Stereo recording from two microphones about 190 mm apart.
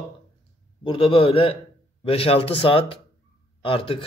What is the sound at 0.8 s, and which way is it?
A man's voice, 30° left (ahead or behind).